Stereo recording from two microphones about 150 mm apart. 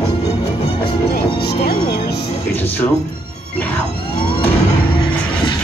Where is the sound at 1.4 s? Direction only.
90° left.